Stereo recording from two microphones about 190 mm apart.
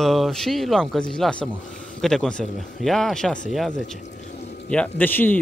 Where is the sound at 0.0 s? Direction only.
Centre (ahead or behind).